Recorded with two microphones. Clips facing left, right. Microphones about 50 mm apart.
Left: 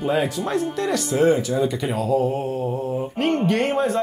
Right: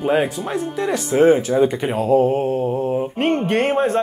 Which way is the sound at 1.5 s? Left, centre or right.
Right.